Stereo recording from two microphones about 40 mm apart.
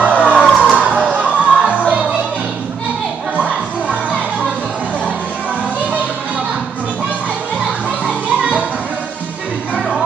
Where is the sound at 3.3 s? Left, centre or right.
Right.